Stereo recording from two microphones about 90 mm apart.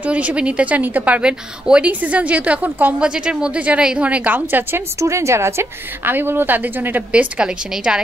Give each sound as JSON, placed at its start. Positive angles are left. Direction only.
{"t": 0.0, "sound": "a woman's voice", "side_deg": -15}
{"t": 5.0, "sound": "a woman's voice", "side_deg": -35}